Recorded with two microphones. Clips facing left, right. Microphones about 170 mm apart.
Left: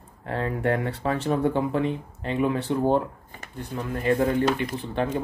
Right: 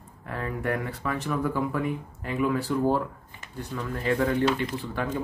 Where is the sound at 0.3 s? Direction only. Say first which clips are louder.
Left 4 dB; 30° left (ahead or behind).